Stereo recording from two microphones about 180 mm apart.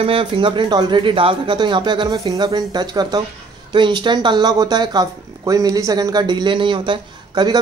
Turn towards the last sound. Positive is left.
turn(degrees=-25)  # may be behind; listen again after turning